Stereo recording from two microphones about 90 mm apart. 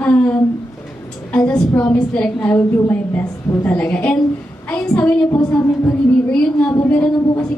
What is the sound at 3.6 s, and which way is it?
A woman's voice, 20° left (ahead or behind).